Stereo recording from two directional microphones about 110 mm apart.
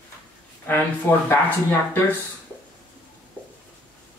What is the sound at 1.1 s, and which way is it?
Speech, 25° left (ahead or behind).